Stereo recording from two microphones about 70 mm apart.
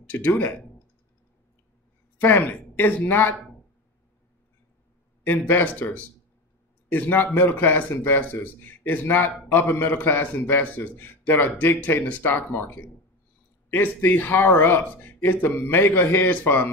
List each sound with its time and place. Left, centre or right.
0.0 s a man's voice: left
2.1 s speech: left
5.2 s a man's voice: left